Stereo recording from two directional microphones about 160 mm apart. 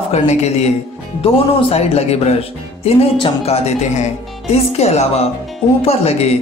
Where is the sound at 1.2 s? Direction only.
40° left (ahead or behind).